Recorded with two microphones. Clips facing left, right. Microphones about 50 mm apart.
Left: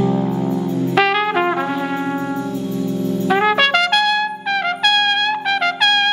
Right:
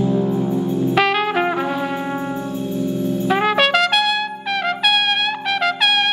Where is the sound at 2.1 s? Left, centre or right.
Centre.